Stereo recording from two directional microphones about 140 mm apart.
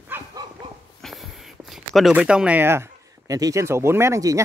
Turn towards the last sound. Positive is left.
turn(degrees=-25)  # may be behind; listen again after turning